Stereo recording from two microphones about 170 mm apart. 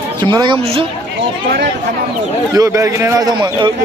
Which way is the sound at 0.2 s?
25° right (ahead or behind).